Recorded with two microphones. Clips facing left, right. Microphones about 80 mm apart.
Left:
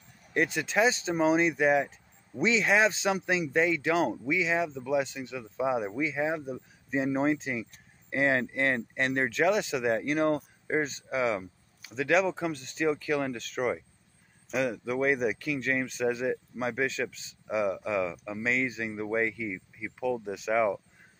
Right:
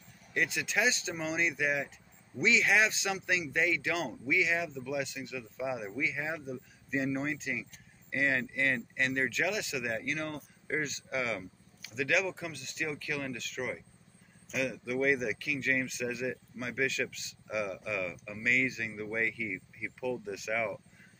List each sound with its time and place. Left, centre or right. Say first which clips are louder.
0.3 s speech: left 5 dB; left
18.4 s speech: left 1 dB; left